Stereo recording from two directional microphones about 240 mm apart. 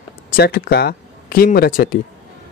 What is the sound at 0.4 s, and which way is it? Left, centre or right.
Speech, left.